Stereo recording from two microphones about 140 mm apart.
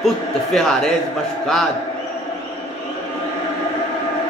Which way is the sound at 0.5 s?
5° left (ahead or behind).